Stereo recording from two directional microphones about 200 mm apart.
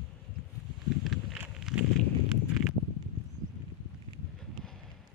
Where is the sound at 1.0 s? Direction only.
Centre (ahead or behind).